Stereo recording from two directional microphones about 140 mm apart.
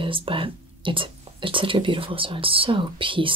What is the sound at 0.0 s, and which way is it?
Speech, 40° right (ahead or behind).